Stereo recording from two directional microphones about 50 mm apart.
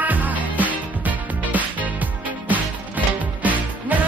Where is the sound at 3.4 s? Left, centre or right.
Right.